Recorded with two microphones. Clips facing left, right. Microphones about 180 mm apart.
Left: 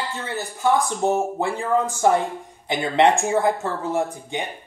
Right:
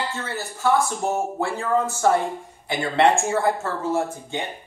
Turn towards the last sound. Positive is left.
turn(degrees=15)  # may be behind; listen again after turning